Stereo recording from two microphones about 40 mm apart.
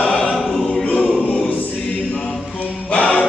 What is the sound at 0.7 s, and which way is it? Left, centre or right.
Choir, left.